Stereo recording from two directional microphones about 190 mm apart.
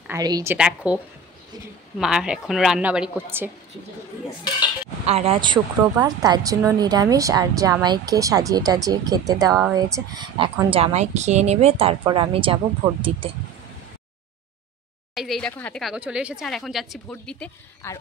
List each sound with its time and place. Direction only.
0.2 s a woman's voice: 15° right (ahead or behind)
0.6 s speech: 5° right (ahead or behind)
2.0 s speech: 5° right (ahead or behind)
5.0 s speech: 30° right (ahead or behind)
5.8 s speech: 15° right (ahead or behind); by 13.2 s 30° right (ahead or behind)
15.1 s speech: centre (ahead or behind)